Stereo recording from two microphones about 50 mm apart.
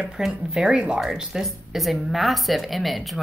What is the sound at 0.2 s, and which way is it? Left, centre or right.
A woman's voice, centre.